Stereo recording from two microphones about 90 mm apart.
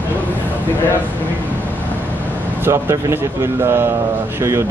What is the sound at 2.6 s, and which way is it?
Speech, 30° right (ahead or behind).